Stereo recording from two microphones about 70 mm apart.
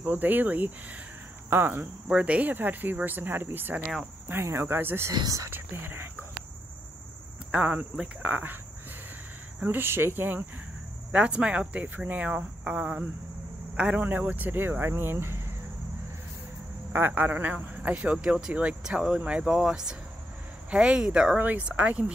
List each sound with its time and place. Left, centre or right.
0.0 s speech: right
2.0 s speech: centre; by 6.0 s right
7.5 s speech: centre
9.6 s speech: right
11.1 s speech: centre; by 15.4 s right
16.9 s speech: right; by 21.4 s centre
21.4 s speech: right